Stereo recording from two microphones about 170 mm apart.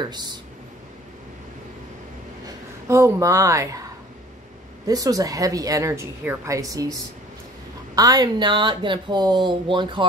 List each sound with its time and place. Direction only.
0.0 s a woman's voice: 25° right (ahead or behind)
2.9 s speech: 20° right (ahead or behind)
4.8 s a woman's voice: 20° right (ahead or behind)